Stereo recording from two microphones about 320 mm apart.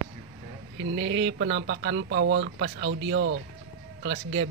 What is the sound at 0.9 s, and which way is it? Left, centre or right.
Speech, right.